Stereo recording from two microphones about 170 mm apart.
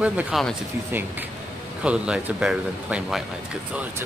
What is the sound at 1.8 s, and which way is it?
A man's voice, 5° right (ahead or behind).